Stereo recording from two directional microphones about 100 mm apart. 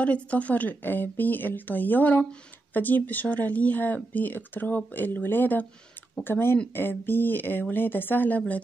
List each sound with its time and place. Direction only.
0.0 s a woman's voice: 15° left (ahead or behind)